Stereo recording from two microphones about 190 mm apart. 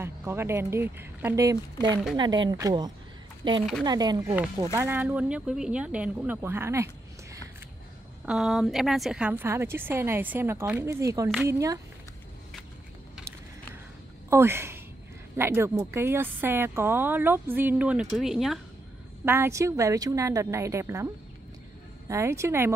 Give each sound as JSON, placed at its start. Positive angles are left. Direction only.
{"t": 0.0, "sound": "speech", "side_deg": -15}
{"t": 4.7, "sound": "speech", "side_deg": -10}
{"t": 8.3, "sound": "speech", "side_deg": 0}
{"t": 14.3, "sound": "speech", "side_deg": -15}
{"t": 19.2, "sound": "speech", "side_deg": -10}